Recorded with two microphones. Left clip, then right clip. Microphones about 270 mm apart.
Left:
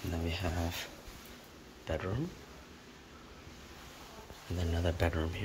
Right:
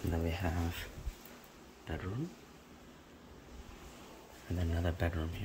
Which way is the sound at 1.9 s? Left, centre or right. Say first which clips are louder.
Left 7 dB; centre.